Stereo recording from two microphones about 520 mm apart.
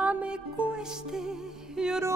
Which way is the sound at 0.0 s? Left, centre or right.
Centre.